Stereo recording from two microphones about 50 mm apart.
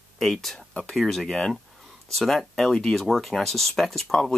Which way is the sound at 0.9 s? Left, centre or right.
Centre.